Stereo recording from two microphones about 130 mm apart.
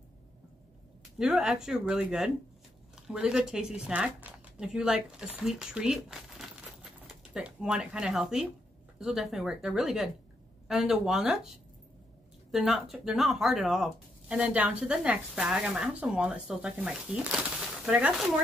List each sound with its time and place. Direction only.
1.1 s speech: 5° right (ahead or behind)